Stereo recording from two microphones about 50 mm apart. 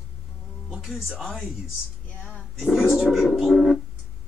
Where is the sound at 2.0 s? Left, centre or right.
Left.